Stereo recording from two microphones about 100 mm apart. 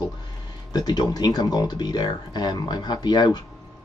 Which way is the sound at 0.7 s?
45° left (ahead or behind).